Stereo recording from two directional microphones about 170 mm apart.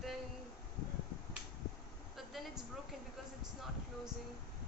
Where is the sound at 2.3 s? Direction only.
Centre (ahead or behind).